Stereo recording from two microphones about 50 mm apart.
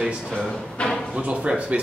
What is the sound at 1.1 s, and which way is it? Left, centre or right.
Speech, right.